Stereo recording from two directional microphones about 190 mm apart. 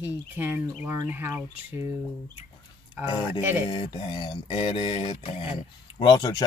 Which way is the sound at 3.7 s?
25° left (ahead or behind).